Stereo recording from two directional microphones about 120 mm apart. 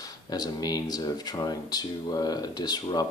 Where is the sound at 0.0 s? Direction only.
35° left (ahead or behind).